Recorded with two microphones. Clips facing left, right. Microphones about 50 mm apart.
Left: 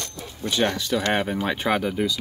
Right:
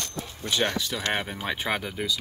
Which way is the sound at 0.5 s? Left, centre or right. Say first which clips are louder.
Left 4 dB; centre.